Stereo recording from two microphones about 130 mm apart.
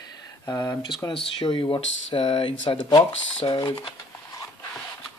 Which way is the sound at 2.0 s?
45° left (ahead or behind).